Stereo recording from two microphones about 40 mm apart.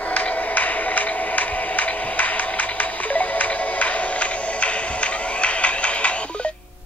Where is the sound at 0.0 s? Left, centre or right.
Left.